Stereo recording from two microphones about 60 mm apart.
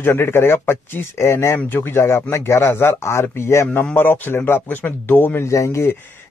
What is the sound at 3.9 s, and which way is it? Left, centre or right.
Speech, left.